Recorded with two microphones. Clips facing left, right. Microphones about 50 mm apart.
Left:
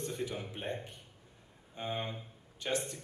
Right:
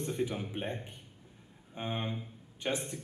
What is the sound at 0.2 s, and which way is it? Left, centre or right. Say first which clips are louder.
Speech: right 4 dB; centre.